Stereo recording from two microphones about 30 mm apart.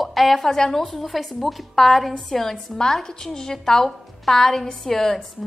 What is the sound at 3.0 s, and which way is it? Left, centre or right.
A woman's voice, left.